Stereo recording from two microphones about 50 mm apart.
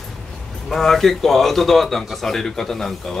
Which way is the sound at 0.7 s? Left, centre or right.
Centre.